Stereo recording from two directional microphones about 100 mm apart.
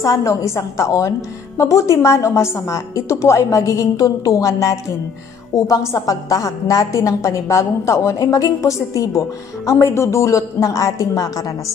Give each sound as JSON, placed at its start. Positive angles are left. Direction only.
{"t": 0.0, "sound": "a woman's voice", "side_deg": 35}